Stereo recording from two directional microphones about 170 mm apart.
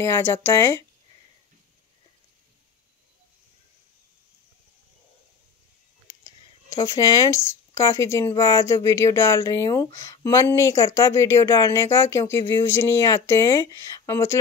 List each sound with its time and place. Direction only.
0.0 s speech: 15° left (ahead or behind)
6.2 s speech: 20° left (ahead or behind)